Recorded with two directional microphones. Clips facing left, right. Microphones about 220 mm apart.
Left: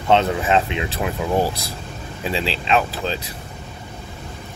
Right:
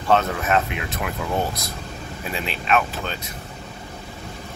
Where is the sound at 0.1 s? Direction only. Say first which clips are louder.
Left 3 dB; 25° left (ahead or behind).